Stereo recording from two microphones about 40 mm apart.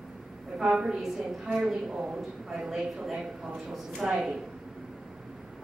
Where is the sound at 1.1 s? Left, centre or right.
Centre.